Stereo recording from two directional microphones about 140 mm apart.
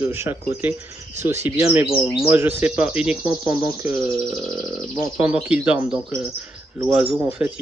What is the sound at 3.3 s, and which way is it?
Speech, 20° right (ahead or behind).